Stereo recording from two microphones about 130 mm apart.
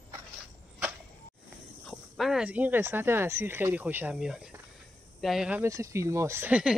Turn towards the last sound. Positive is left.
turn(degrees=-5)  # may be behind; listen again after turning